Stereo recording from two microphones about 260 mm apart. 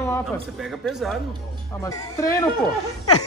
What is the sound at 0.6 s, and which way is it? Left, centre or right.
Speech, centre.